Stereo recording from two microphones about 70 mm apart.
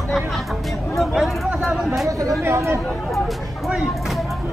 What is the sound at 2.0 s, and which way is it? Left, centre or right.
Speech, right.